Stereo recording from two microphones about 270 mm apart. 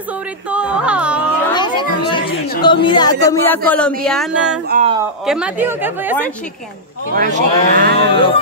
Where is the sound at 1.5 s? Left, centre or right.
Centre.